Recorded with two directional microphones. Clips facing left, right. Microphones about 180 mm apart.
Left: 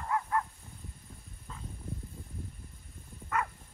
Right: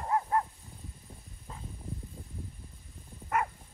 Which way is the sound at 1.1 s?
20° right (ahead or behind).